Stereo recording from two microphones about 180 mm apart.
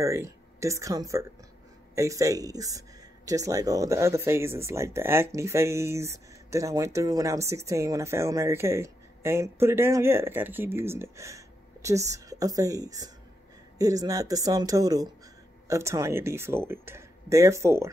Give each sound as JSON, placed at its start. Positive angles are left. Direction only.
{"t": 0.0, "sound": "speech", "side_deg": -15}